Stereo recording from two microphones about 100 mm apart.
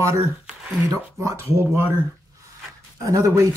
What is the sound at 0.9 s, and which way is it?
Speech, 30° right (ahead or behind).